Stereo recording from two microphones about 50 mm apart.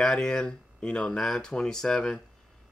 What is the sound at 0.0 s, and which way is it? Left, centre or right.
Speech, centre.